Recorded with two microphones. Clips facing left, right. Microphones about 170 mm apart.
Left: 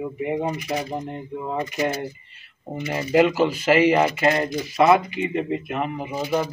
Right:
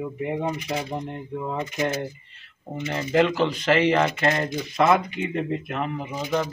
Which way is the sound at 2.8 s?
10° left (ahead or behind).